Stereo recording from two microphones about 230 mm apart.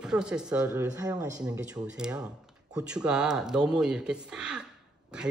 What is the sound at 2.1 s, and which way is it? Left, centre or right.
Speech, centre.